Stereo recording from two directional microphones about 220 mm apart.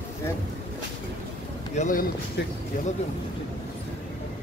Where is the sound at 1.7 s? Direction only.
35° left (ahead or behind).